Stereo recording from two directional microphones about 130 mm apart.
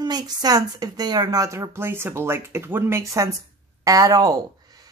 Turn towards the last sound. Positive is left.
turn(degrees=-30)  # may be behind; listen again after turning